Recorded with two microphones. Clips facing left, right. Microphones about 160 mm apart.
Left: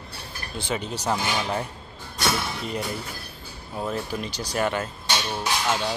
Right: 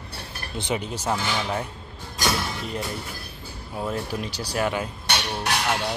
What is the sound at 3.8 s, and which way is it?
Speech, 5° right (ahead or behind).